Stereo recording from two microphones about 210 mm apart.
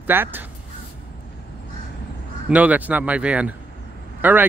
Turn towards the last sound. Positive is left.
turn(degrees=-10)  # may be behind; listen again after turning